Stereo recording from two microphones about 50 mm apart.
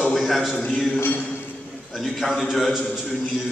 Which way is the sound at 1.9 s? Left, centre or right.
Centre.